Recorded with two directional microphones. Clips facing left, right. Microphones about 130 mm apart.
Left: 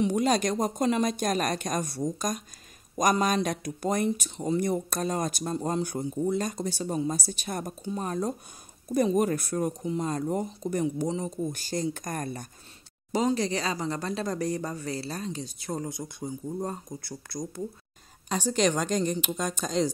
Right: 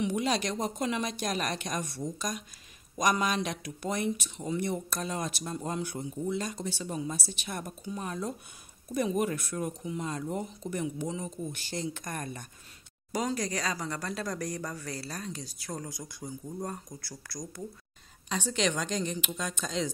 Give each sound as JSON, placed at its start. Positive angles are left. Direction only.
{"t": 0.0, "sound": "a woman's voice", "side_deg": 45}
{"t": 13.1, "sound": "speech", "side_deg": 25}
{"t": 18.3, "sound": "a woman's voice", "side_deg": 45}